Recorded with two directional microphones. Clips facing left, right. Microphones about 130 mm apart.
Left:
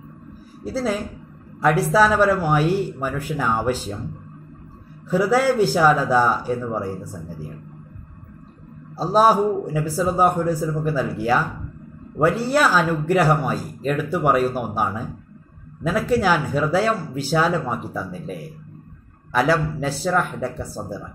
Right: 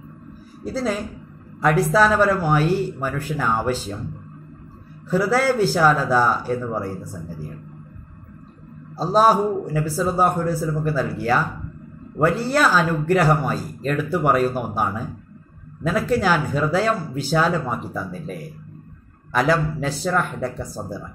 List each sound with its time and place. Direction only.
0.7 s speech: 5° left (ahead or behind)
5.1 s speech: 10° left (ahead or behind)
8.9 s speech: 10° left (ahead or behind)